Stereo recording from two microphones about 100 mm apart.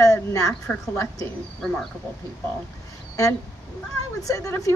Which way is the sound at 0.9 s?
30° left (ahead or behind).